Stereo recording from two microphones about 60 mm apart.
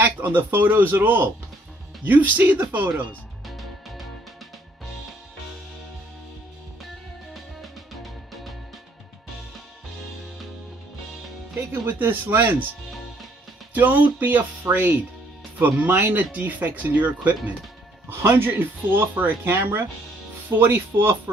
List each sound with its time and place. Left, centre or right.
0.0 s speech: right
3.4 s music: centre
7.3 s music: centre
11.7 s speech: right
13.7 s speech: right
18.2 s speech: right